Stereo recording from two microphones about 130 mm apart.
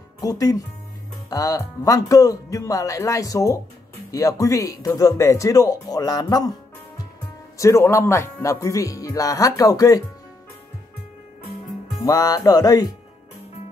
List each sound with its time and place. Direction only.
0.2 s speech: 30° left (ahead or behind)
7.5 s speech: 25° left (ahead or behind)
12.0 s speech: 30° left (ahead or behind)